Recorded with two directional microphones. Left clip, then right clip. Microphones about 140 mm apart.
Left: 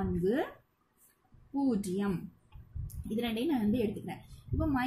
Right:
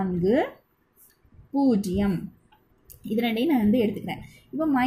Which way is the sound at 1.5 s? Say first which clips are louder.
Right 9 dB; 25° right (ahead or behind).